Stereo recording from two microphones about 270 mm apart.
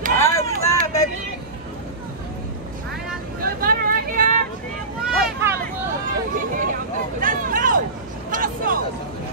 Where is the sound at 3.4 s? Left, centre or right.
Right.